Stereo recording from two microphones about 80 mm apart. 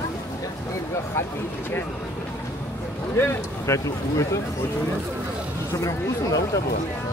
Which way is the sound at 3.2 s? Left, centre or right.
Left.